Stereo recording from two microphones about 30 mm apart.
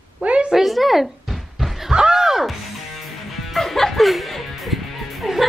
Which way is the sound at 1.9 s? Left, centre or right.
Right.